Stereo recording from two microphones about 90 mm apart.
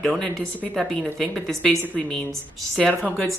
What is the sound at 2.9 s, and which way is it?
Speech, 15° left (ahead or behind).